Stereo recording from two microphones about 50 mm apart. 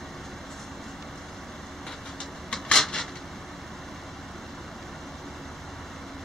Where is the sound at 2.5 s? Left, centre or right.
Centre.